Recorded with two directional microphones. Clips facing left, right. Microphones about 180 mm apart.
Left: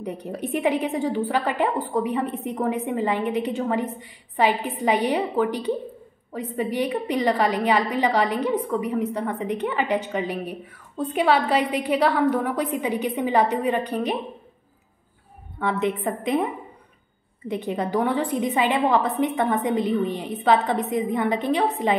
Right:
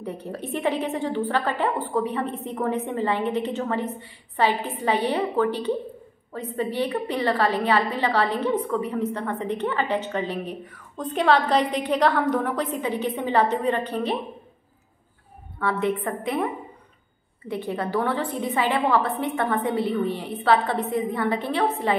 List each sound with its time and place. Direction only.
0.0 s a woman's voice: 15° left (ahead or behind)
15.6 s a woman's voice: 20° left (ahead or behind)
17.5 s a woman's voice: 20° left (ahead or behind)